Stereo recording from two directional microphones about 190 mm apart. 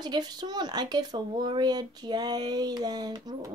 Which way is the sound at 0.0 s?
20° right (ahead or behind).